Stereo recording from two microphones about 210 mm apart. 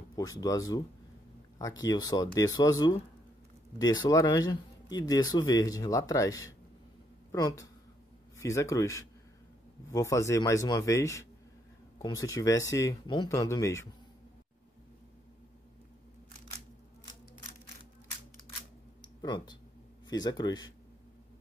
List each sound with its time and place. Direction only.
0.1 s speech: 15° left (ahead or behind)
18.9 s a sound: 20° left (ahead or behind)
20.1 s speech: 20° left (ahead or behind)